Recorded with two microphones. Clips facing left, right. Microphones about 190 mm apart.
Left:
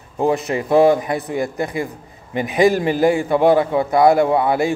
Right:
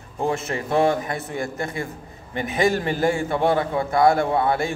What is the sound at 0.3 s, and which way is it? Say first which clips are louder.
A man's voice: left 7 dB; 15° left (ahead or behind).